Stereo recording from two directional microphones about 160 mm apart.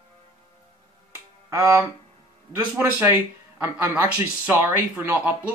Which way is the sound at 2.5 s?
15° right (ahead or behind).